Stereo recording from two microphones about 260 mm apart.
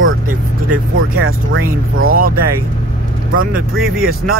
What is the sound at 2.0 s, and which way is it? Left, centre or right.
Speech, right.